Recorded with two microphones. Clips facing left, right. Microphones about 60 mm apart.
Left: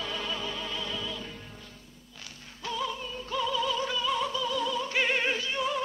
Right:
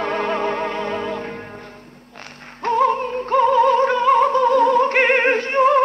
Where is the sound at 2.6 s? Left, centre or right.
Right.